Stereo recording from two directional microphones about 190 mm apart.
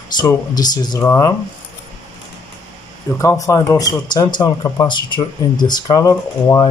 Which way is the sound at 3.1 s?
15° left (ahead or behind).